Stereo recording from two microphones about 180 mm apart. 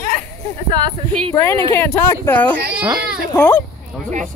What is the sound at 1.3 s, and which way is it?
Speech, 15° left (ahead or behind).